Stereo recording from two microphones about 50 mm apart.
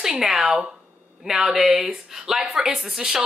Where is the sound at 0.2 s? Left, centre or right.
Centre.